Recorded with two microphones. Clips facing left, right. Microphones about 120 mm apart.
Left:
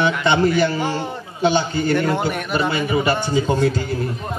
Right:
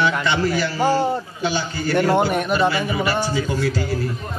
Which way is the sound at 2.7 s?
25° left (ahead or behind).